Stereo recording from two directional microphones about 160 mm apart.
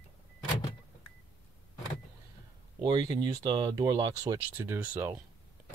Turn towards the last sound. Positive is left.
turn(degrees=-10)  # may be behind; listen again after turning